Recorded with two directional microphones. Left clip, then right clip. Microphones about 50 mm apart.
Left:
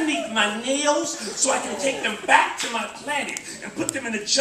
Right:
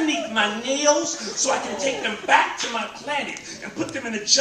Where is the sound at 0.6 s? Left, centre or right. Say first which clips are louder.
Right 2 dB; centre.